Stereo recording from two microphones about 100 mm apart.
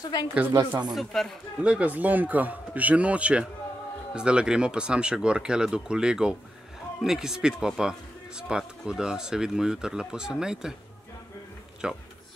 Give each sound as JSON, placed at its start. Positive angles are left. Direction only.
{"t": 0.5, "sound": "speech", "side_deg": -45}
{"t": 0.9, "sound": "speech", "side_deg": 5}
{"t": 1.6, "sound": "speech", "side_deg": -15}
{"t": 11.8, "sound": "speech", "side_deg": -5}